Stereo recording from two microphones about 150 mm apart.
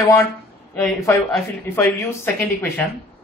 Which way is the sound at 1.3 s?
15° left (ahead or behind).